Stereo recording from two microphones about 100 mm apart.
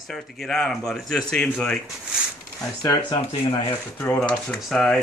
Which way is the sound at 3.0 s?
55° left (ahead or behind).